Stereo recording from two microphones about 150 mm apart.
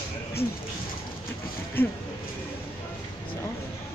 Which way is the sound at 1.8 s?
15° left (ahead or behind).